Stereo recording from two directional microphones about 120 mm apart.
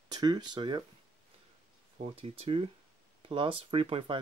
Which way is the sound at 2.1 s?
55° right (ahead or behind).